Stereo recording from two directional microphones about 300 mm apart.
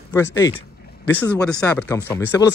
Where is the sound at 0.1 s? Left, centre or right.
Centre.